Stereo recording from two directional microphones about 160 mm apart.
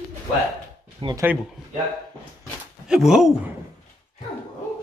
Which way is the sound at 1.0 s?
30° right (ahead or behind).